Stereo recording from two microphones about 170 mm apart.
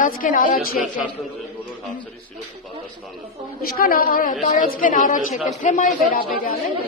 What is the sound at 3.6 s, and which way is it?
A woman's voice, 60° left (ahead or behind).